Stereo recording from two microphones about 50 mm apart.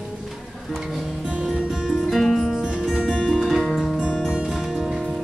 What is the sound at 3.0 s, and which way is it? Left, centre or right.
Music, centre.